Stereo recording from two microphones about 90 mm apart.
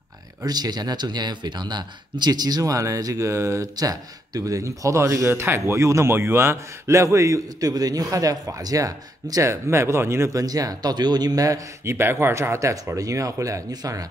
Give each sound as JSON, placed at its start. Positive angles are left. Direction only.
{"t": 0.5, "sound": "speech", "side_deg": -50}
{"t": 10.4, "sound": "speech", "side_deg": -45}